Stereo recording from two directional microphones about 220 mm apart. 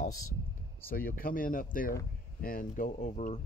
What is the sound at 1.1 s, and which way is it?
Speech, 40° left (ahead or behind).